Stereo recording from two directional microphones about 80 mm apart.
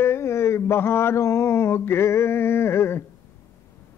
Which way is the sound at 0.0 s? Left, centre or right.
Left.